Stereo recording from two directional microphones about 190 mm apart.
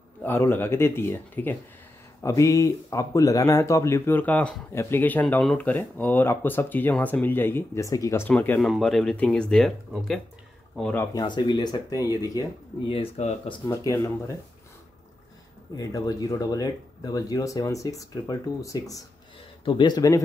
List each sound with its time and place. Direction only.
0.2 s speech: 10° left (ahead or behind)
11.1 s speech: 25° left (ahead or behind)
13.7 s speech: 15° left (ahead or behind)
15.7 s speech: 20° left (ahead or behind)